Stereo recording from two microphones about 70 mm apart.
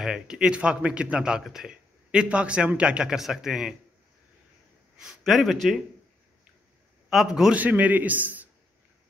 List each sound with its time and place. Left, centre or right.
0.0 s a man's voice: centre
5.2 s speech: centre
7.1 s speech: centre
7.5 s a man's voice: right